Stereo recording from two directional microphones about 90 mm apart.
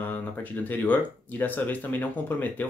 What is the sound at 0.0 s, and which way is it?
Speech, 20° left (ahead or behind).